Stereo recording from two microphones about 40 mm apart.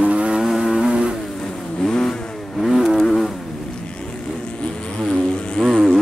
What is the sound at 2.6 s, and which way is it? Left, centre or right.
Vehicle, centre.